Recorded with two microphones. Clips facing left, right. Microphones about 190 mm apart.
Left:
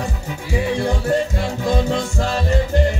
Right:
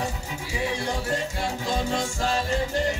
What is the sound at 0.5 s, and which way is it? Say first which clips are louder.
Music: left 8 dB; 55° left (ahead or behind).